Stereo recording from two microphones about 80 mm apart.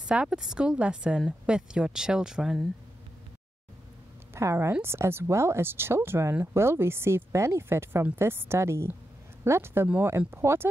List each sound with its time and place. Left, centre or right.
0.0 s speech: centre
4.3 s a woman's voice: right